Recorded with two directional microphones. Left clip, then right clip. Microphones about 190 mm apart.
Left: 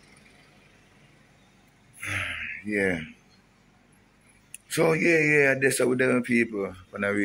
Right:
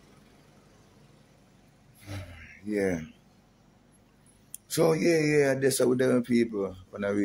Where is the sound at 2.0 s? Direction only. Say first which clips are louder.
Left 16 dB; centre (ahead or behind).